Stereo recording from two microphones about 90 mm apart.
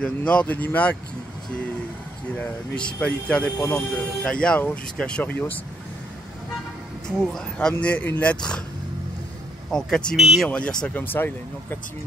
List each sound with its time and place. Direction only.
0.0 s speech: 10° left (ahead or behind)
2.3 s speech: 15° left (ahead or behind)
7.1 s speech: 10° left (ahead or behind)
7.8 s speech: 20° left (ahead or behind)
9.7 s speech: 5° left (ahead or behind)
10.1 s speech: 5° right (ahead or behind)
10.5 s speech: 10° left (ahead or behind)
11.0 s speech: 20° left (ahead or behind)